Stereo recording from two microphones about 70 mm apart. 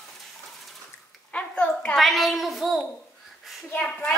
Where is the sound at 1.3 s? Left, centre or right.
Centre.